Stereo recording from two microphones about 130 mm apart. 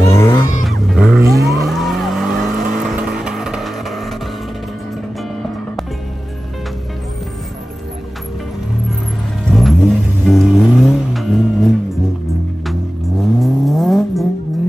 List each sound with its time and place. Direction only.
0.1 s a sound: 20° left (ahead or behind)
0.7 s a sound: 5° right (ahead or behind)
1.2 s vehicle: 25° right (ahead or behind)
1.7 s vehicle: centre (ahead or behind)
9.5 s car: centre (ahead or behind)
13.2 s vehicle: centre (ahead or behind)